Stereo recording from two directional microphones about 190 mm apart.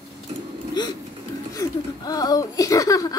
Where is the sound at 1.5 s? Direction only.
20° left (ahead or behind).